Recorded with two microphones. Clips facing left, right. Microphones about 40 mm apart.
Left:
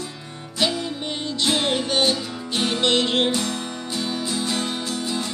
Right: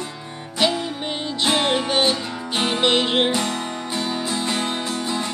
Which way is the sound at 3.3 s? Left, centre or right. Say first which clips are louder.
Right 2 dB; right.